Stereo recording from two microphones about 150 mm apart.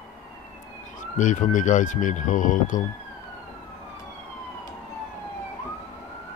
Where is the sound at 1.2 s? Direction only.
55° left (ahead or behind).